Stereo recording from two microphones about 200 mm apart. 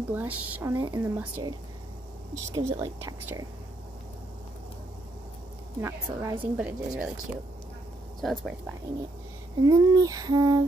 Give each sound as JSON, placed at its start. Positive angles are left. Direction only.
{"t": 0.1, "sound": "speech", "side_deg": -10}
{"t": 2.3, "sound": "speech", "side_deg": -15}
{"t": 5.8, "sound": "speech", "side_deg": -10}
{"t": 8.2, "sound": "speech", "side_deg": 0}
{"t": 9.6, "sound": "speech", "side_deg": -20}